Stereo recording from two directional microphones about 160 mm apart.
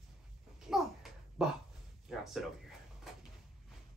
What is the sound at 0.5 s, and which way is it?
Babbling, 5° right (ahead or behind).